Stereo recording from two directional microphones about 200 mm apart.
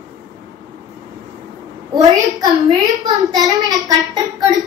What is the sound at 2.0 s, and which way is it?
Speech, 20° right (ahead or behind).